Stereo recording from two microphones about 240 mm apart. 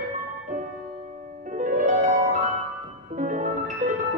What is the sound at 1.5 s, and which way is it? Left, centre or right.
Music, right.